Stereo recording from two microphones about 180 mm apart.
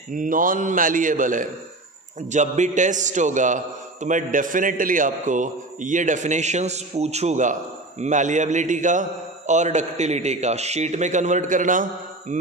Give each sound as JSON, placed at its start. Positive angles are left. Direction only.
{"t": 0.1, "sound": "a man's voice", "side_deg": -50}